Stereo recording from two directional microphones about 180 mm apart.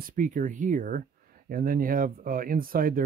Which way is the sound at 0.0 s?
45° right (ahead or behind).